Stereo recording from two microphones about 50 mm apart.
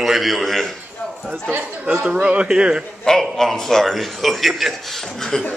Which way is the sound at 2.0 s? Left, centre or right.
Right.